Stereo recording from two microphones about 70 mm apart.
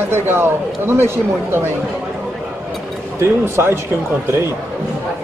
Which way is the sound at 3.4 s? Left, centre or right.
Right.